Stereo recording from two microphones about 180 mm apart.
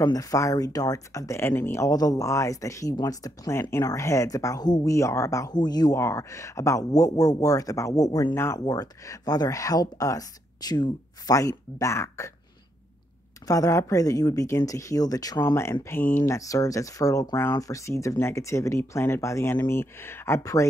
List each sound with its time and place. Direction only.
0.0 s speech: 20° left (ahead or behind)
13.5 s speech: 20° left (ahead or behind)